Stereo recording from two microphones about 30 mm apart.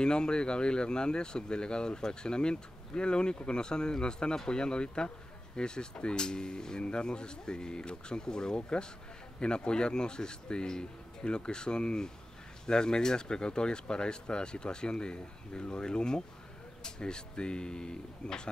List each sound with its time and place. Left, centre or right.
0.0 s speech: left